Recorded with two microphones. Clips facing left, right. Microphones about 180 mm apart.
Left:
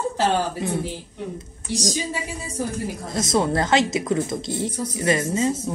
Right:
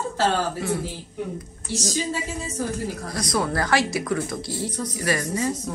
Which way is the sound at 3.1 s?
25° left (ahead or behind).